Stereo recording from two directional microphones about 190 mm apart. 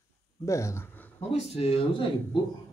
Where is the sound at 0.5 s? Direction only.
15° left (ahead or behind).